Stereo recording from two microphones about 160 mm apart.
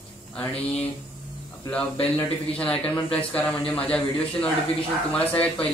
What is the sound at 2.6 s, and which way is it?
Speech, 10° left (ahead or behind).